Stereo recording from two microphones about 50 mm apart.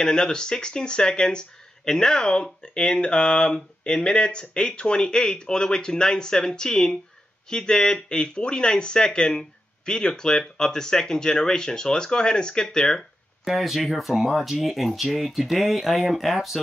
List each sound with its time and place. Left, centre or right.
0.0 s speech: centre
13.5 s speech: centre